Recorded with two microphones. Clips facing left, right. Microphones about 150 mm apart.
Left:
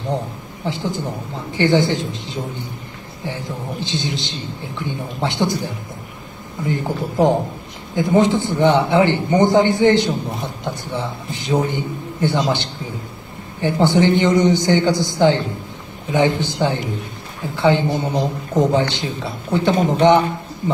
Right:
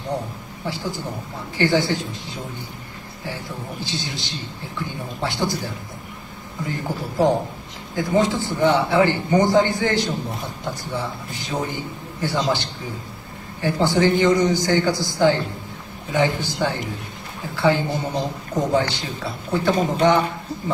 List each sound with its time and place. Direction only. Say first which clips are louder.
0.7 s a man's voice: left 4 dB; 20° left (ahead or behind)
3.8 s a man's voice: left 5 dB; 20° left (ahead or behind)
6.7 s a man's voice: left 6 dB; 20° left (ahead or behind)